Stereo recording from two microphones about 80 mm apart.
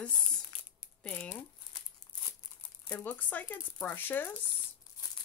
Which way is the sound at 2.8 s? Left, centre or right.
Left.